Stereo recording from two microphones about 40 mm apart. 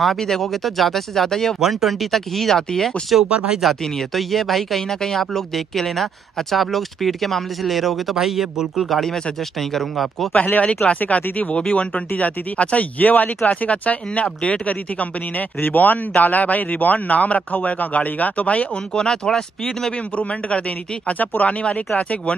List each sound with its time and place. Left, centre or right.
0.0 s speech: centre
1.6 s speech: centre
3.3 s speech: right
3.6 s speech: centre
9.0 s speech: centre
10.3 s a man's voice: left
14.7 s speech: left
15.6 s a man's voice: left
18.9 s speech: centre
20.2 s speech: left